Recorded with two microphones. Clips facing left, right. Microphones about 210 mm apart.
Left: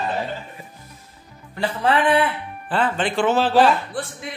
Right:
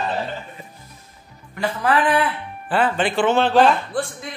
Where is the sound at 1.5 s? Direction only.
30° left (ahead or behind).